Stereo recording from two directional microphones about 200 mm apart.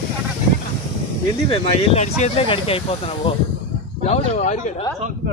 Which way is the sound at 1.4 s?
30° left (ahead or behind).